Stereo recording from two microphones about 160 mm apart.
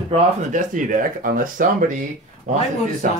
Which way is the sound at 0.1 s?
55° right (ahead or behind).